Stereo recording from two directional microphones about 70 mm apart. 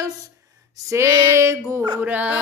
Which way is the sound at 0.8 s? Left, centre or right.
Right.